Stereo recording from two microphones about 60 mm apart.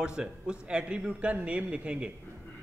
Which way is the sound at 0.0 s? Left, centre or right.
Centre.